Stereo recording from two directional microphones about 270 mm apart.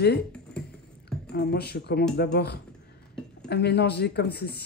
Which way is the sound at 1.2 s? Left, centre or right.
Left.